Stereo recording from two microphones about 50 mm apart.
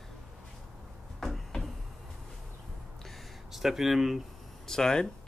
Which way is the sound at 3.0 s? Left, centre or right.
Centre.